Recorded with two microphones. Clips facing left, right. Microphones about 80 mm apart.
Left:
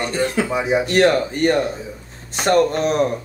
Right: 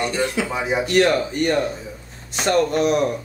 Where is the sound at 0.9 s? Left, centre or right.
Left.